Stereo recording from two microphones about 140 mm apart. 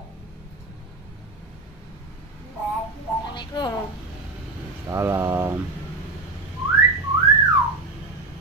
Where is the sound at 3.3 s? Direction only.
35° left (ahead or behind).